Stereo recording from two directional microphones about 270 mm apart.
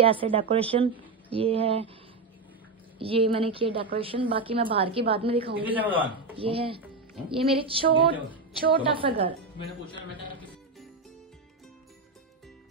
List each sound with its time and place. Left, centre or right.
0.0 s a woman's voice: centre
3.0 s a woman's voice: centre
5.6 s speech: centre
6.3 s a woman's voice: centre